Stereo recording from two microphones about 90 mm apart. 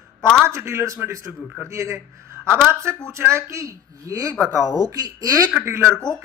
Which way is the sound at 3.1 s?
30° right (ahead or behind).